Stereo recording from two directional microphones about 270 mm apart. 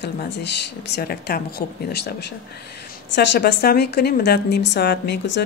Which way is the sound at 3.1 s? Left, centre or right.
Left.